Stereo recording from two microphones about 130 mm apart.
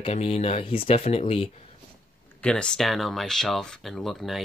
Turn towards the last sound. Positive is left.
turn(degrees=0)  # may be behind; listen again after turning